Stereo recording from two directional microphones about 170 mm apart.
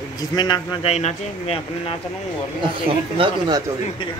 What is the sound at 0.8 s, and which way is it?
Speech, 40° left (ahead or behind).